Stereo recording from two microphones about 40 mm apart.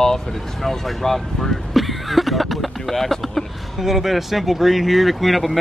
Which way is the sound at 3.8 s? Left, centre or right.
Centre.